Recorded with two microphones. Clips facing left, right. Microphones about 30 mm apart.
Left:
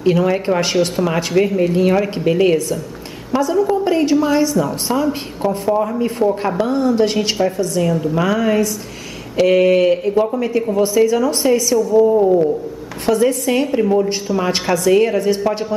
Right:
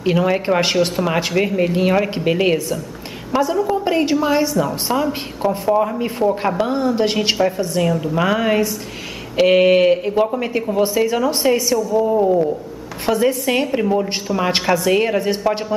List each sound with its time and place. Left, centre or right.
0.0 s speech: centre
12.0 s speech: centre